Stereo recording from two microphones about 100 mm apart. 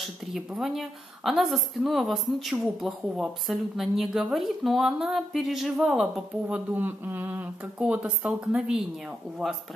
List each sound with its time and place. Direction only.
0.0 s a woman's voice: centre (ahead or behind)
6.7 s a woman's voice: 15° right (ahead or behind)